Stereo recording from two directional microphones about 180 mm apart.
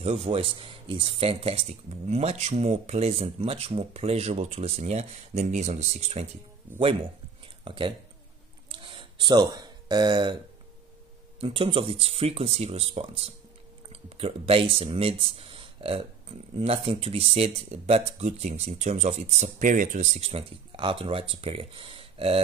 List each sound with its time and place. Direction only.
0.0 s speech: 35° right (ahead or behind)
8.7 s a sound: 30° right (ahead or behind)
11.3 s speech: 30° right (ahead or behind)